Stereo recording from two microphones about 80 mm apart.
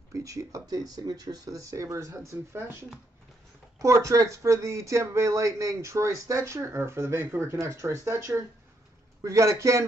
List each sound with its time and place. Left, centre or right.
0.1 s speech: right
3.8 s speech: right